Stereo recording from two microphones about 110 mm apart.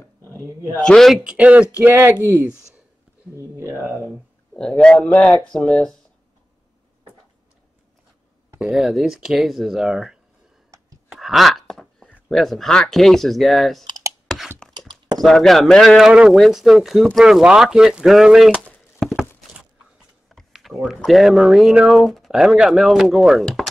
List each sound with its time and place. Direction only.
0.2 s a sound: 30° right (ahead or behind)
0.7 s speech: 5° left (ahead or behind); by 4.0 s 15° right (ahead or behind)
4.6 s speech: 5° left (ahead or behind)
8.5 s speech: 5° right (ahead or behind)
11.1 s wail: centre (ahead or behind)
12.3 s speech: centre (ahead or behind)
13.8 s computer keyboard: 35° right (ahead or behind)
14.6 s a sound: 5° left (ahead or behind)
15.1 s speech: 5° left (ahead or behind)
18.5 s a sound: 10° left (ahead or behind)
19.0 s a sound: 5° right (ahead or behind)
20.2 s speech: centre (ahead or behind)